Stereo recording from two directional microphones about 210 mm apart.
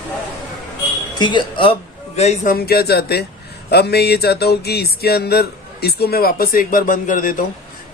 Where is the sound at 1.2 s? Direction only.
20° left (ahead or behind); by 3.2 s 50° left (ahead or behind).